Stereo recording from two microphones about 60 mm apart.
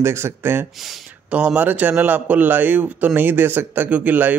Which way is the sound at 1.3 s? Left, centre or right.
Right.